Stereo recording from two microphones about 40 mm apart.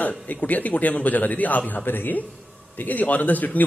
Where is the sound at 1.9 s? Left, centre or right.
Left.